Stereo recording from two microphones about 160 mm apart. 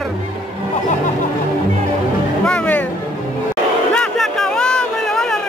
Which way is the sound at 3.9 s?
5° left (ahead or behind).